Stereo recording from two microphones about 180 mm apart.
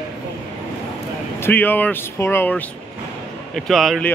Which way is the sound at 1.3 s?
10° left (ahead or behind).